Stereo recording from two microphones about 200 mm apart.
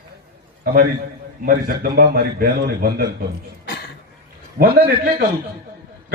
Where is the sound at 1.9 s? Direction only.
50° right (ahead or behind).